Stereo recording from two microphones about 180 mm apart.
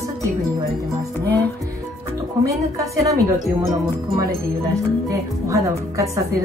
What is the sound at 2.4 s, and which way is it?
A woman's voice, 15° right (ahead or behind).